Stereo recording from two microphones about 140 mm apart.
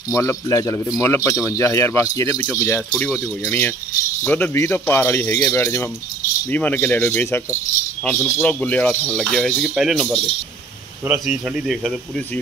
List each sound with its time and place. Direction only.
0.1 s speech: 20° left (ahead or behind); by 10.2 s 5° right (ahead or behind)
11.2 s speech: centre (ahead or behind)